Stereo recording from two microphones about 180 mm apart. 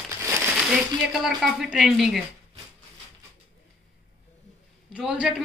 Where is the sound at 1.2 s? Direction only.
Centre (ahead or behind).